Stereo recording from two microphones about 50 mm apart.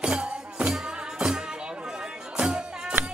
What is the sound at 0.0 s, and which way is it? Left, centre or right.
Music, centre.